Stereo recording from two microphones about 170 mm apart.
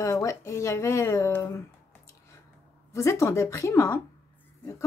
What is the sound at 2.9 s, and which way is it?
Speech, 15° left (ahead or behind).